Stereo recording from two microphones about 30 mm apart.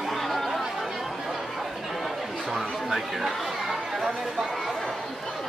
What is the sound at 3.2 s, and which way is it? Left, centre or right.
Chatter, centre.